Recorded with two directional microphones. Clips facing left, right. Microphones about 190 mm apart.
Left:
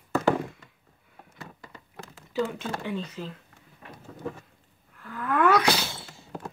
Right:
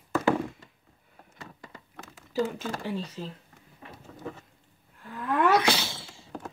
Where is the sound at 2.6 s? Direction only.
35° right (ahead or behind).